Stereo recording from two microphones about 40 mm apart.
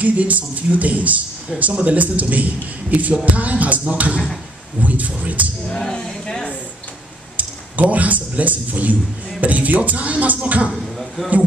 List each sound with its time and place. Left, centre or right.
0.0 s music: right
1.5 s speech: centre
1.9 s music: right
5.7 s speech: centre
7.3 s a man's voice: right
9.4 s music: right
10.7 s a sound: centre